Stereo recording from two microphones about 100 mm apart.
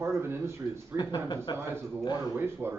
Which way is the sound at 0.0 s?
25° right (ahead or behind).